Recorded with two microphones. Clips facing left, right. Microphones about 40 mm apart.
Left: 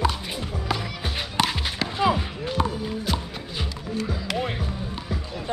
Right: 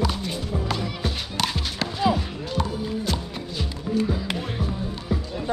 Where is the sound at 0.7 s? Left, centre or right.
Centre.